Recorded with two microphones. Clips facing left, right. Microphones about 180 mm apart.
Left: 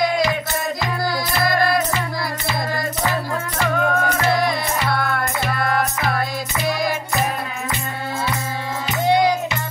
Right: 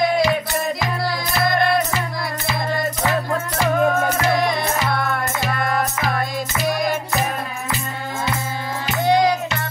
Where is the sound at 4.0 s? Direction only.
20° right (ahead or behind).